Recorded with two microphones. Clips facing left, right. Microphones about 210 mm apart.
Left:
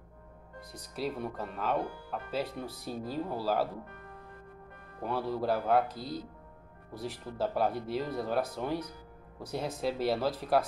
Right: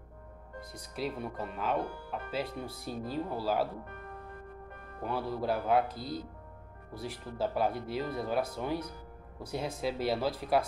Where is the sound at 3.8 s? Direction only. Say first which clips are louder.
Right 2 dB; 55° right (ahead or behind).